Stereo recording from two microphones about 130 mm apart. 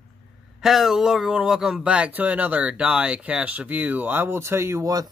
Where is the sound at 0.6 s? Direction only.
Centre (ahead or behind).